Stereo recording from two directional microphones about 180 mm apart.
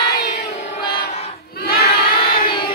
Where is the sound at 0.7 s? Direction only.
60° left (ahead or behind).